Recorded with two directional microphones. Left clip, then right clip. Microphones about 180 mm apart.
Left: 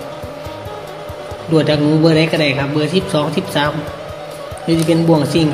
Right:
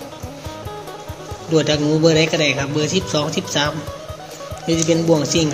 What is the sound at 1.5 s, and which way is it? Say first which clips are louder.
Speech: left 3 dB; 15° right (ahead or behind).